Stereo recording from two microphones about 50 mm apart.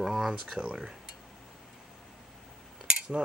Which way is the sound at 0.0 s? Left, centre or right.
Centre.